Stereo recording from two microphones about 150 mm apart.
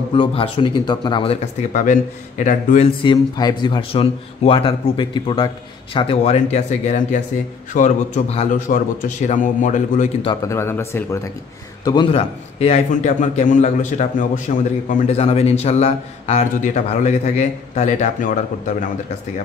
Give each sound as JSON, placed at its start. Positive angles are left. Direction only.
{"t": 0.1, "sound": "speech", "side_deg": 35}
{"t": 1.7, "sound": "a man's voice", "side_deg": 55}
{"t": 3.0, "sound": "a man's voice", "side_deg": 30}
{"t": 8.5, "sound": "a man's voice", "side_deg": 60}
{"t": 10.4, "sound": "speech", "side_deg": 15}
{"t": 11.8, "sound": "a man's voice", "side_deg": 30}
{"t": 12.1, "sound": "a man's voice", "side_deg": 40}